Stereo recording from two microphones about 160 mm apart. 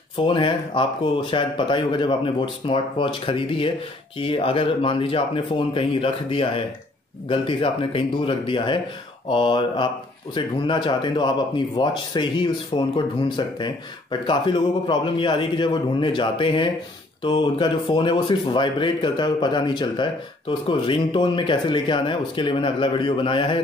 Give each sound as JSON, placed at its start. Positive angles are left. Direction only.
{"t": 0.2, "sound": "speech", "side_deg": 30}